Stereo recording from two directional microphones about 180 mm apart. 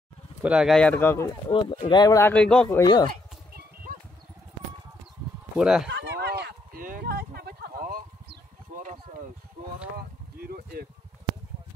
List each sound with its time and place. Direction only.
0.4 s speech: 5° right (ahead or behind); by 1.3 s 15° left (ahead or behind)
1.5 s speech: 25° left (ahead or behind); by 2.8 s 5° left (ahead or behind)
2.8 s speech: 25° left (ahead or behind)
5.6 s speech: 5° right (ahead or behind)
5.9 s a sound: 75° right (ahead or behind); by 8.9 s 50° right (ahead or behind)
9.9 s a sound: 55° right (ahead or behind)